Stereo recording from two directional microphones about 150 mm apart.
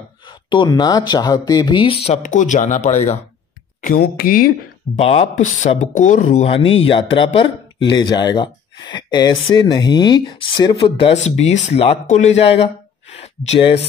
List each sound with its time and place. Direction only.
0.2 s speech: 30° left (ahead or behind)
2.2 s speech: 55° left (ahead or behind)
3.8 s speech: 75° left (ahead or behind)
4.9 s speech: 40° left (ahead or behind)
6.5 s speech: 40° left (ahead or behind)